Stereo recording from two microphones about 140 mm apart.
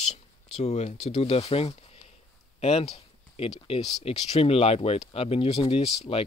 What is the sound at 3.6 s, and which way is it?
Speech, 45° left (ahead or behind).